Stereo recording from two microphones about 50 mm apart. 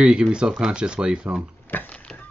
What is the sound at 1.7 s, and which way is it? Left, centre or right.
Speech, left.